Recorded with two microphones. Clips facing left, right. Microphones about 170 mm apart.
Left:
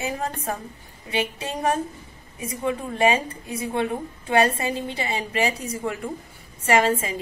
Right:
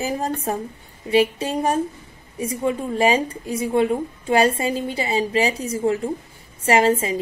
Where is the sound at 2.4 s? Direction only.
30° right (ahead or behind).